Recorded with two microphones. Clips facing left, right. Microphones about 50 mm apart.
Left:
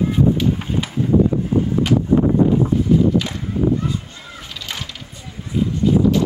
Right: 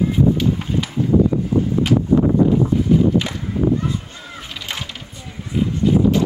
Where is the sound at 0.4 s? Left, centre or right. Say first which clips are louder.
Even; centre.